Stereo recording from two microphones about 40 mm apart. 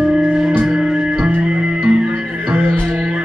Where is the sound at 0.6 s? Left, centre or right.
Centre.